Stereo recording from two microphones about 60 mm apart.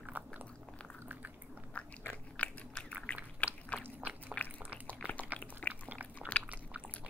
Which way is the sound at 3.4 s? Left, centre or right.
Left.